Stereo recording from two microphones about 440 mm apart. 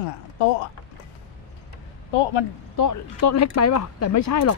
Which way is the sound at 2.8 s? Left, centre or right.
Left.